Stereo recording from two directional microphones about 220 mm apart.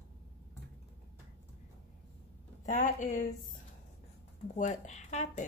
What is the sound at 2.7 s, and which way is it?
Speech, 35° left (ahead or behind).